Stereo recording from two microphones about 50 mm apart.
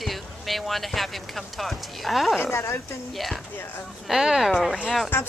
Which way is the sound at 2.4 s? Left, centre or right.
Left.